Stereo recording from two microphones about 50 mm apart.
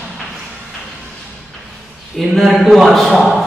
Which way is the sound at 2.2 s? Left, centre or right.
Centre.